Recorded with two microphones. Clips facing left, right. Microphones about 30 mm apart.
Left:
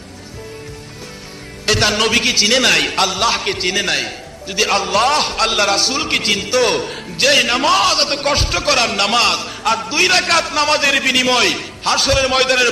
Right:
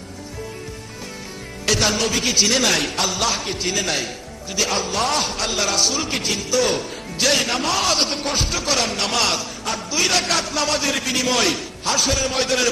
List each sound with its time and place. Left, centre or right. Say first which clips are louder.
1.7 s a man's voice: left 4 dB; left
2.0 s a man's voice: left 5 dB; left
3.1 s a man's voice: left 5 dB; left
4.7 s a man's voice: left 9 dB; left
5.1 s a man's voice: left 6 dB; left
5.8 s a man's voice: left 3 dB; left
6.0 s a man's voice: left 6 dB; left
7.2 s a man's voice: left 6 dB; left
7.8 s a man's voice: left 5 dB; left
8.1 s a man's voice: left 6 dB; left
8.5 s a man's voice: left 6 dB; left
9.1 s a man's voice: left 6 dB; left
9.6 s a man's voice: left 9 dB; left
9.8 s a man's voice: left 4 dB; left